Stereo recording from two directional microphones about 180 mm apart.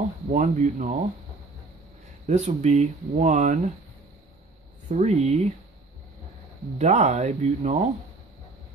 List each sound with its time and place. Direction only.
0.3 s speech: 45° right (ahead or behind)
2.2 s speech: 40° right (ahead or behind)
4.8 s speech: 40° right (ahead or behind)
6.8 s speech: 40° right (ahead or behind)